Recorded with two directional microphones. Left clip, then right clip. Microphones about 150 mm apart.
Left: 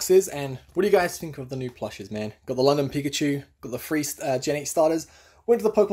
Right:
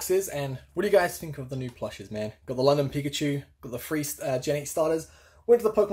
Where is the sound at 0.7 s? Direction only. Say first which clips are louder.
Left 2 dB; 25° left (ahead or behind).